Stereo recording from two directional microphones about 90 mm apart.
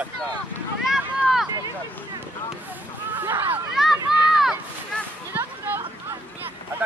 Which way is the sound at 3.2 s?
25° right (ahead or behind).